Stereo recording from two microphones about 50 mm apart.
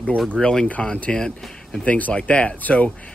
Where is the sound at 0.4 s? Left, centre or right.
Centre.